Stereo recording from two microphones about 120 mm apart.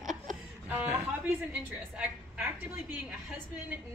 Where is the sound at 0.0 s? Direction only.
90° right.